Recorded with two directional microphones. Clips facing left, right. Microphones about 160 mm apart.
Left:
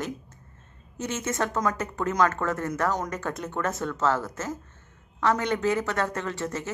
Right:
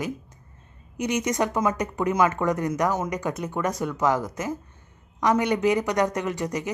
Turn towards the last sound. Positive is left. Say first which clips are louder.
# right 3 dB
turn(degrees=-15)  # may be behind; listen again after turning